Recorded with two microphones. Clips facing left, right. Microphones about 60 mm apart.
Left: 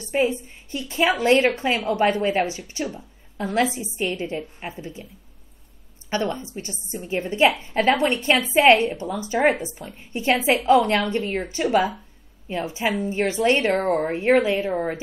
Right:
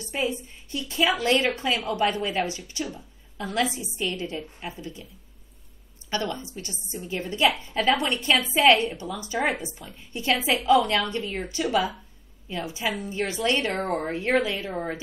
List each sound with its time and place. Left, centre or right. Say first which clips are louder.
0.0 s a woman's voice: left 6 dB; left
6.0 s a woman's voice: left 4 dB; left